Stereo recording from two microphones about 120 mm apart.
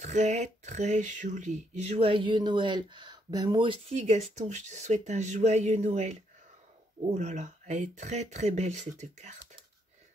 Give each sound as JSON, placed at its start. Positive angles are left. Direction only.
{"t": 0.0, "sound": "speech", "side_deg": -80}
{"t": 3.9, "sound": "speech", "side_deg": -70}
{"t": 7.2, "sound": "speech", "side_deg": -85}